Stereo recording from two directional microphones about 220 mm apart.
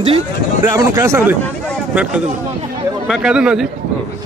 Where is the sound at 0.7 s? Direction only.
15° right (ahead or behind).